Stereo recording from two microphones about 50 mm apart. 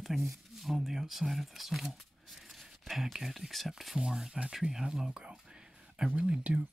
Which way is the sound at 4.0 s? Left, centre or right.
Centre.